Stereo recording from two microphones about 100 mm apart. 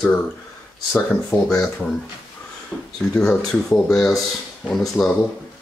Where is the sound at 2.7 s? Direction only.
10° left (ahead or behind).